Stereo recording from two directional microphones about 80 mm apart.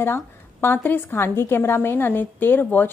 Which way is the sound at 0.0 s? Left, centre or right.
Left.